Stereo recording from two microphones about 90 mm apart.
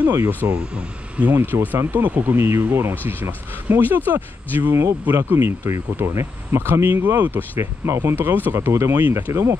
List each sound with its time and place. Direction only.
0.4 s speech: 15° right (ahead or behind); by 9.6 s 30° right (ahead or behind)